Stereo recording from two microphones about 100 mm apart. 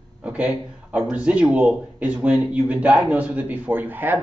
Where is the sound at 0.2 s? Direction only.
10° right (ahead or behind).